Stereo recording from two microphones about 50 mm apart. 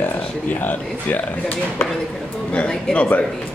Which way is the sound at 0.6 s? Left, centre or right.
Left.